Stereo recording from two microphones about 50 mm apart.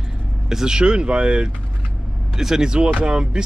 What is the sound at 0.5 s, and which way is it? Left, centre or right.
Speech, centre.